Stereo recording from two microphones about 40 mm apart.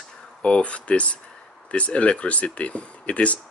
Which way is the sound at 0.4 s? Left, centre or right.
Left.